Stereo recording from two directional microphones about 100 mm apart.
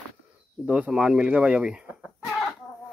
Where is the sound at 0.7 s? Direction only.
10° right (ahead or behind).